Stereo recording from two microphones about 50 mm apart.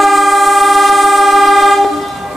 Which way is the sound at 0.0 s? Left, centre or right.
Centre.